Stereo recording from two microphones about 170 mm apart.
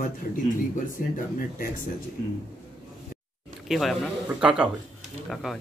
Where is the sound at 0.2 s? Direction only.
60° left (ahead or behind).